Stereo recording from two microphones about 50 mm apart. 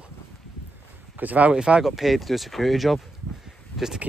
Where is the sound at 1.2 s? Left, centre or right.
Right.